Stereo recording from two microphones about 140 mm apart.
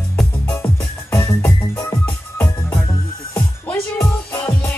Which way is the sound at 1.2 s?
15° left (ahead or behind).